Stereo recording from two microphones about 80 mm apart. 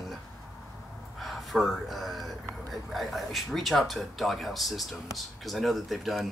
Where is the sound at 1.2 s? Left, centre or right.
Centre.